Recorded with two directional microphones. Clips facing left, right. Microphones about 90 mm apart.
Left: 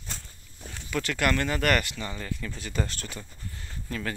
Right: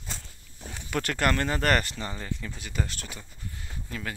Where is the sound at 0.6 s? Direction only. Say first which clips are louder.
Right 1 dB; 10° right (ahead or behind).